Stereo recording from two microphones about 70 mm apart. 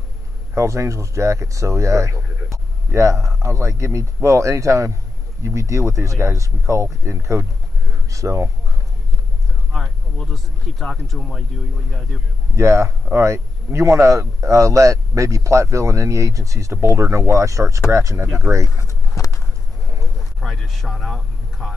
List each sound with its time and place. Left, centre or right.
0.6 s a man's voice: right
7.9 s a sound: right
9.7 s speech: centre
12.5 s a man's voice: right
19.1 s a sound: left
20.2 s speech: centre